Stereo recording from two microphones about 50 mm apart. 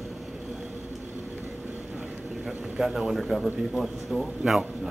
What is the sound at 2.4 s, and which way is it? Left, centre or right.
Speech, centre.